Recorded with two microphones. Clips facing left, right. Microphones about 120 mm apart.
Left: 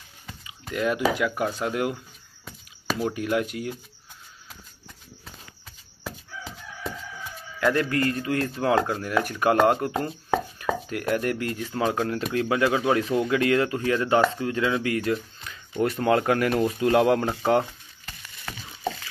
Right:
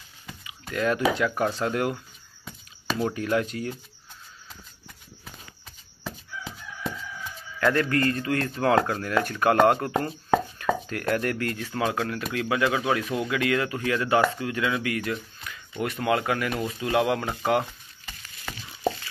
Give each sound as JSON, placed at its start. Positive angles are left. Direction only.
{"t": 0.7, "sound": "a man's voice", "side_deg": 10}
{"t": 2.4, "sound": "a sound", "side_deg": 5}
{"t": 7.6, "sound": "a man's voice", "side_deg": 10}
{"t": 12.0, "sound": "speech", "side_deg": 35}
{"t": 13.0, "sound": "speech", "side_deg": -5}
{"t": 13.3, "sound": "speech", "side_deg": 30}
{"t": 17.6, "sound": "a sound", "side_deg": 0}